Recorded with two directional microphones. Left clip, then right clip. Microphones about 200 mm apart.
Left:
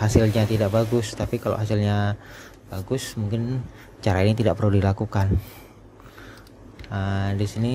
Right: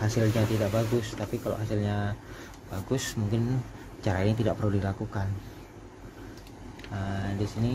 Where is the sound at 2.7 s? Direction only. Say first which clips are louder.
Left 3 dB; 20° left (ahead or behind).